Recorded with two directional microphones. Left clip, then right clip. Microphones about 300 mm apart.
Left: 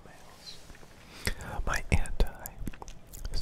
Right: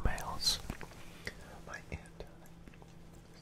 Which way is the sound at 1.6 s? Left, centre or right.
Left.